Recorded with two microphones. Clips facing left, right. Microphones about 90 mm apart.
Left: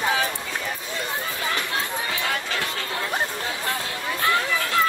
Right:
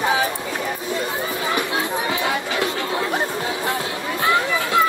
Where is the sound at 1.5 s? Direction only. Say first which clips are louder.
Right 6 dB; 15° right (ahead or behind).